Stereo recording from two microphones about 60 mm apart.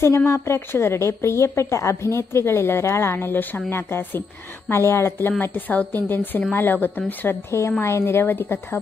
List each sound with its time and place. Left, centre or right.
0.2 s a woman's voice: left
5.4 s a woman's voice: left
7.8 s a woman's voice: left